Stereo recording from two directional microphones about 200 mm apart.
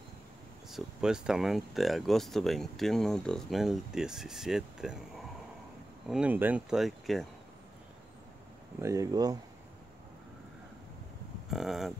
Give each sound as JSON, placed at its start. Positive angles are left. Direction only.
{"t": 0.7, "sound": "speech", "side_deg": 0}
{"t": 8.8, "sound": "speech", "side_deg": -15}
{"t": 11.5, "sound": "speech", "side_deg": 0}